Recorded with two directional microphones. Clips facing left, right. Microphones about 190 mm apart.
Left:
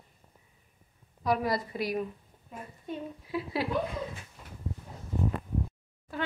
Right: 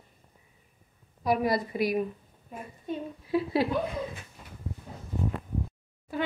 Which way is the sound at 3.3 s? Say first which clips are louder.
Right 6 dB; 25° right (ahead or behind).